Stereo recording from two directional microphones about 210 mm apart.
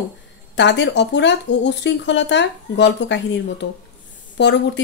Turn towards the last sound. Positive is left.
turn(degrees=55)  # may be behind; listen again after turning